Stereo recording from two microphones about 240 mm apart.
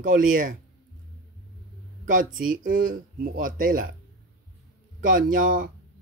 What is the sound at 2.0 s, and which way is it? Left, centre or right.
Speech, right.